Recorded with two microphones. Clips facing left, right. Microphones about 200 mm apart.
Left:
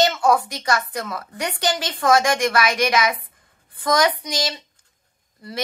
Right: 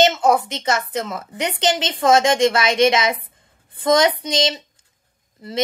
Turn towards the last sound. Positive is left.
turn(degrees=-25)  # may be behind; listen again after turning